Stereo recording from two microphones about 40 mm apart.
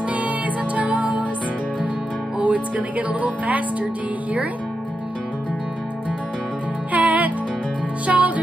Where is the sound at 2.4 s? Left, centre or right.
Right.